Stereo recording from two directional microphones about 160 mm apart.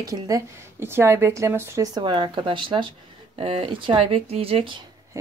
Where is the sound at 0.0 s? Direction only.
20° right (ahead or behind).